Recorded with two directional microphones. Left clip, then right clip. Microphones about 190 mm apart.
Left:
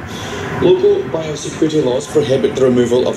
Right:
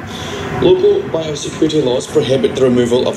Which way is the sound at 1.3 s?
15° left (ahead or behind).